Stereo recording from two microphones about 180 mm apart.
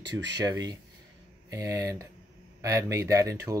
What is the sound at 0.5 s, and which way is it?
Speech, 20° right (ahead or behind).